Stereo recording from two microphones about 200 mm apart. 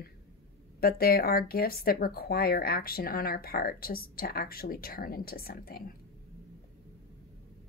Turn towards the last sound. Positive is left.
turn(degrees=50)  # may be behind; listen again after turning